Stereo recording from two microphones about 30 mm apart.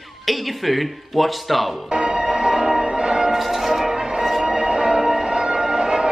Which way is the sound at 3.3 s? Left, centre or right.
Centre.